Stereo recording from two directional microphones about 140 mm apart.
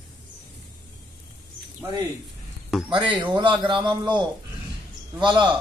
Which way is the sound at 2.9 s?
35° right (ahead or behind).